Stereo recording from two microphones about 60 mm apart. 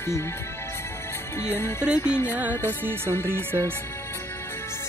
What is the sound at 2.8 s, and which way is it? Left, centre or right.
Speech, right.